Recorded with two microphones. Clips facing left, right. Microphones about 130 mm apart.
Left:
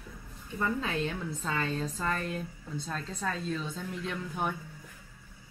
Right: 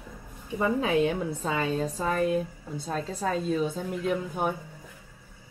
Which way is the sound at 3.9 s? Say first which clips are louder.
Right 8 dB; 10° right (ahead or behind).